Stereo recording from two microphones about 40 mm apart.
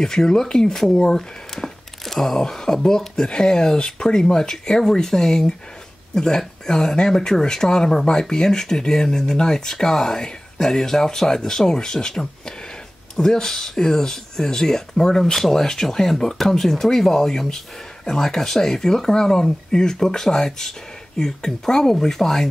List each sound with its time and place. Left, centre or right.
0.0 s speech: centre
15.3 s speech: centre